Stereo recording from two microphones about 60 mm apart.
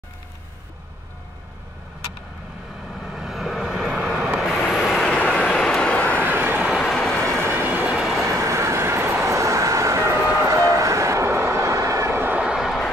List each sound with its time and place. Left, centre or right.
3.1 s vehicle: centre
4.6 s vehicle: centre
6.2 s vehicle: right
6.8 s vehicle: centre
7.4 s train: right
7.9 s train: centre
8.3 s vehicle: right
12.4 s vehicle: centre